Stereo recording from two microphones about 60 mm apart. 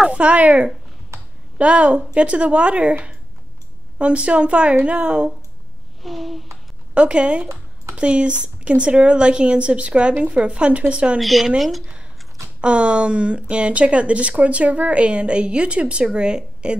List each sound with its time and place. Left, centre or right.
0.0 s speech: centre
6.0 s speech: centre
6.9 s speech: centre
11.1 s speech: centre
12.5 s speech: centre